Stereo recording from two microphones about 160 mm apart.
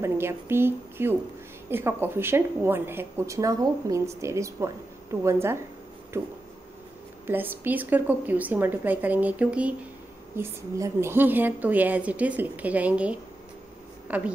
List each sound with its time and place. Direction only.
0.0 s speech: 15° right (ahead or behind)
7.2 s speech: 10° right (ahead or behind)